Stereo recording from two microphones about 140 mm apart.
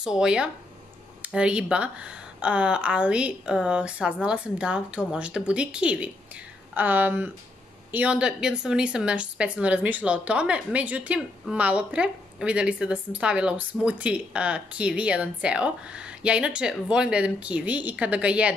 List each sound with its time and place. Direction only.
0.0 s a woman's voice: 5° right (ahead or behind)